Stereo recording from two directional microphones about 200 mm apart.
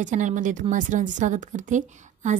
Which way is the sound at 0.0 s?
40° right (ahead or behind).